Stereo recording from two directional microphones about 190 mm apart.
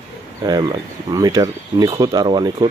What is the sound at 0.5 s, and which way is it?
Speech, 20° right (ahead or behind).